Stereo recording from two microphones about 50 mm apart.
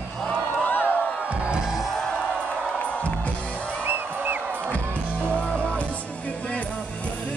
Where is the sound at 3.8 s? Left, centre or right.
Right.